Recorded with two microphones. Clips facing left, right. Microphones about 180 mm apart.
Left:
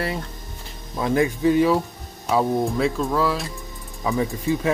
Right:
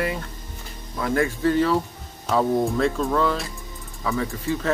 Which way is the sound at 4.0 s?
15° left (ahead or behind).